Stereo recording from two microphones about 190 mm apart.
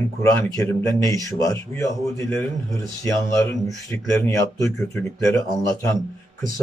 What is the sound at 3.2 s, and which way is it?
Speech, 15° left (ahead or behind).